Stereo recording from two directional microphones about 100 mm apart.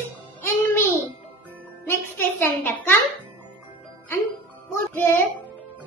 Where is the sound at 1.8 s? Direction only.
20° left (ahead or behind).